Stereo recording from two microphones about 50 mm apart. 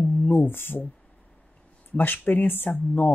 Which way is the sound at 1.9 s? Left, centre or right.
Left.